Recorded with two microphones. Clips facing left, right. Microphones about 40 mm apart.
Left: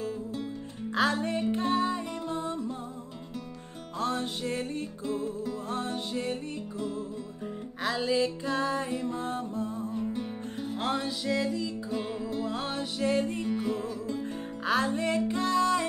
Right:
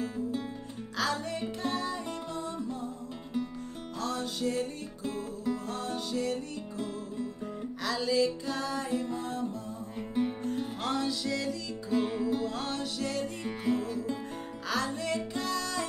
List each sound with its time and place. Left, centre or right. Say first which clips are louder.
0.9 s music: left 5 dB; left
4.0 s music: left 2 dB; left
5.7 s music: left 2 dB; left
7.8 s music: left 1 dB; left
9.9 s music: right 5 dB; centre
10.8 s music: left 3 dB; left
11.9 s music: right 8 dB; centre
12.4 s music: left 1 dB; centre
13.5 s music: left 1 dB; centre
14.7 s music: left 5 dB; left